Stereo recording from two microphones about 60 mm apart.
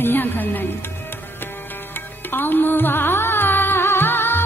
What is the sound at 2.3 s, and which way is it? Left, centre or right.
Music, left.